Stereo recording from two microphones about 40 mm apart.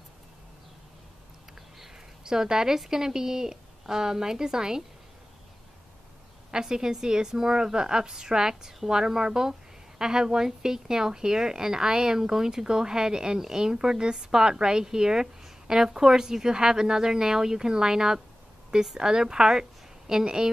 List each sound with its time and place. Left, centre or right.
2.2 s a woman's voice: centre
6.5 s a woman's voice: centre